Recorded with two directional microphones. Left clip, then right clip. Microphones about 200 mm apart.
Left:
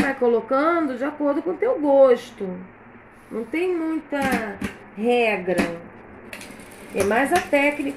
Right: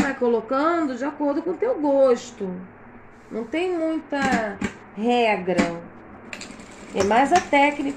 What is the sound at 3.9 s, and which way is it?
Speech, centre (ahead or behind).